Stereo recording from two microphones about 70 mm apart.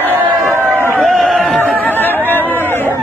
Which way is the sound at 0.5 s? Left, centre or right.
Right.